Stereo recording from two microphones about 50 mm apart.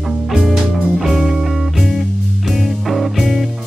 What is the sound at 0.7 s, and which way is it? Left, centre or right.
Music, centre.